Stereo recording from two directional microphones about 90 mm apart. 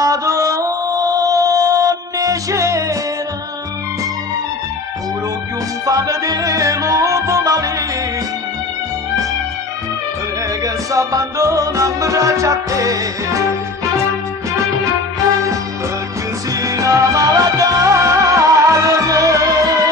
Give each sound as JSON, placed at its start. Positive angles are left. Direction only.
{"t": 0.0, "sound": "music", "side_deg": -40}
{"t": 5.9, "sound": "music", "side_deg": -40}
{"t": 10.6, "sound": "music", "side_deg": -40}
{"t": 16.5, "sound": "music", "side_deg": -40}